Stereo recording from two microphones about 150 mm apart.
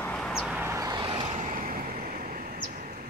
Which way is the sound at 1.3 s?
60° right (ahead or behind).